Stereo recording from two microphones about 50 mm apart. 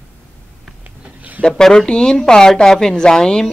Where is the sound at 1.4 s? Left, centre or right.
Centre.